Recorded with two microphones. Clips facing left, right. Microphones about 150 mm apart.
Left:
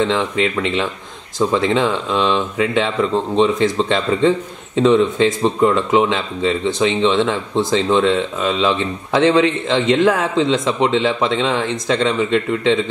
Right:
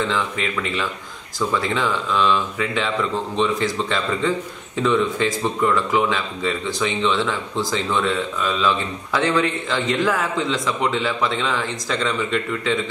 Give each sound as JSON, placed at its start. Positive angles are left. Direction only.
{"t": 0.0, "sound": "speech", "side_deg": 25}